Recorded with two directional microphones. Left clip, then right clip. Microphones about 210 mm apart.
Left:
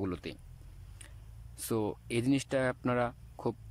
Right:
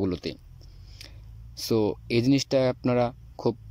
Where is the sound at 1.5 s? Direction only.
15° right (ahead or behind).